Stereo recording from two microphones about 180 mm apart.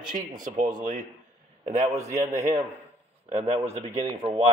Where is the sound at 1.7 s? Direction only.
40° right (ahead or behind).